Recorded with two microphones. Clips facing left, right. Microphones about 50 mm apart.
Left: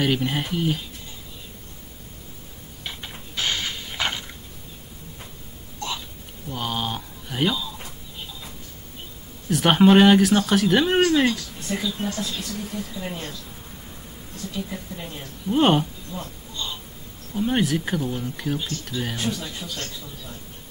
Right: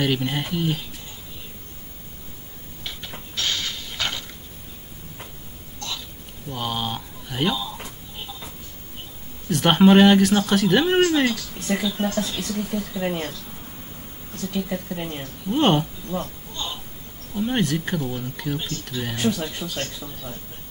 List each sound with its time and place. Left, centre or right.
0.0 s speech: centre
2.8 s a sound: centre
6.5 s speech: centre
9.5 s speech: centre
11.7 s speech: right
12.2 s speech: right
12.5 s speech: right
14.5 s speech: right
15.4 s speech: centre
17.3 s speech: centre
19.3 s speech: right